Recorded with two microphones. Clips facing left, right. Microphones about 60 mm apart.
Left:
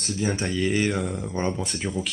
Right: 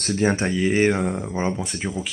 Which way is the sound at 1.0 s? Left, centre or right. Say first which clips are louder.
Right 4 dB; right.